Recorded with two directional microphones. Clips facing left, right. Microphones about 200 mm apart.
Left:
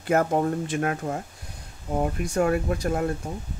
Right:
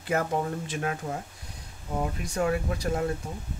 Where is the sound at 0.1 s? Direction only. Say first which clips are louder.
Left 5 dB; 50° left (ahead or behind).